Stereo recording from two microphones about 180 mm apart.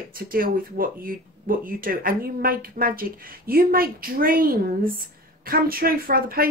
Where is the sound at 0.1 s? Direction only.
55° right (ahead or behind).